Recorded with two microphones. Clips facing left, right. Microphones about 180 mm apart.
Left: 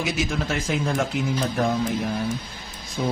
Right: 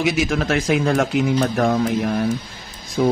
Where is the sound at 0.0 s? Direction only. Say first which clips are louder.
Right 6 dB; 75° right (ahead or behind).